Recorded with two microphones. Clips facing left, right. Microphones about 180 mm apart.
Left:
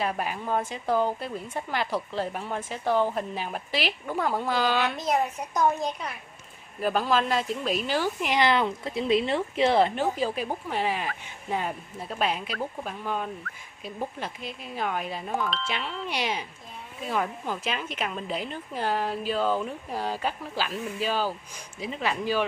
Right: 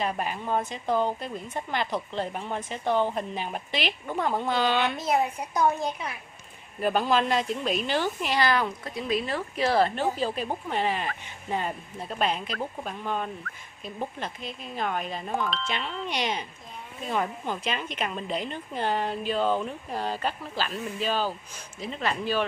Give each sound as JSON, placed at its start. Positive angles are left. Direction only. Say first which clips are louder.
{"t": 0.7, "sound": "a woman's voice", "louder": "left 1 dB", "side_deg": 10}